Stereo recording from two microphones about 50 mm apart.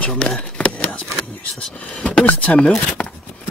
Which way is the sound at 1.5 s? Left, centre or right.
Left.